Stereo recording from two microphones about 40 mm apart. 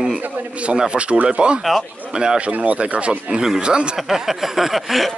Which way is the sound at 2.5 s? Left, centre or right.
Right.